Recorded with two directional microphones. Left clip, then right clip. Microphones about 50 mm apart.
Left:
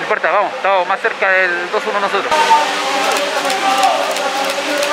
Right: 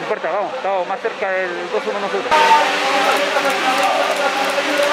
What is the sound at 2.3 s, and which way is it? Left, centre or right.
Speech, right.